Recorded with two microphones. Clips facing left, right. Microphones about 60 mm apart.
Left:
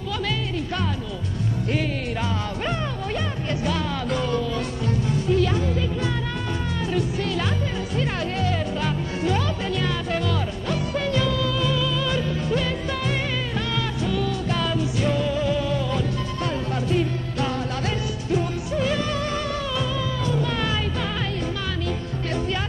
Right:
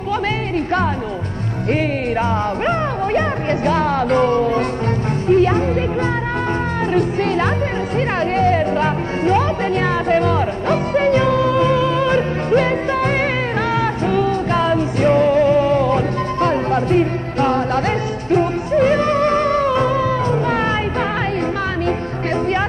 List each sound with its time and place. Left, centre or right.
3.2 s music: right
6.9 s music: right